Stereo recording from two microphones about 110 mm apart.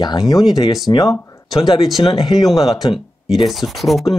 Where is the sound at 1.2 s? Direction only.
25° left (ahead or behind).